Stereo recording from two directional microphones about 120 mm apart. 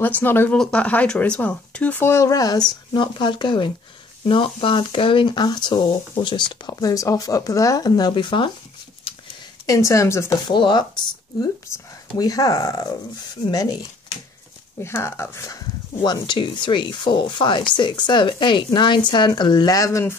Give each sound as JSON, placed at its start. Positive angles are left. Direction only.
{"t": 0.0, "sound": "speech", "side_deg": 15}
{"t": 2.9, "sound": "speech", "side_deg": 40}
{"t": 9.7, "sound": "speech", "side_deg": 25}
{"t": 10.5, "sound": "speech", "side_deg": 40}
{"t": 11.4, "sound": "speech", "side_deg": 25}
{"t": 14.8, "sound": "speech", "side_deg": 20}